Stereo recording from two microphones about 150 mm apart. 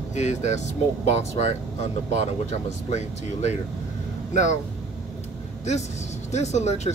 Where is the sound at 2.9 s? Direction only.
50° left (ahead or behind).